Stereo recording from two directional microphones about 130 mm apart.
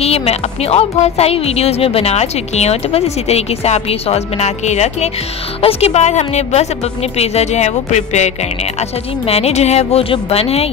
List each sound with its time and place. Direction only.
0.0 s a woman's voice: 55° left (ahead or behind)